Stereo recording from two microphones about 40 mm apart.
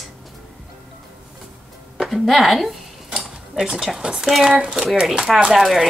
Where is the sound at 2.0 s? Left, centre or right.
Centre.